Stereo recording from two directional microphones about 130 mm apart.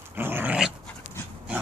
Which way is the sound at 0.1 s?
15° right (ahead or behind).